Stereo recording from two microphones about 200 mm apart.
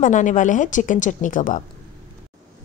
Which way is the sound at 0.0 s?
40° left (ahead or behind).